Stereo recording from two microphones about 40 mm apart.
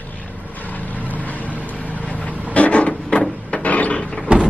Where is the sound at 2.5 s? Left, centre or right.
Left.